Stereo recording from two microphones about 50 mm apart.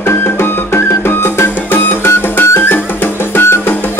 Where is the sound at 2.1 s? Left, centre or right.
Left.